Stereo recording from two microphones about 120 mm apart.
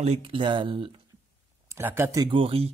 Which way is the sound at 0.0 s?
55° right (ahead or behind).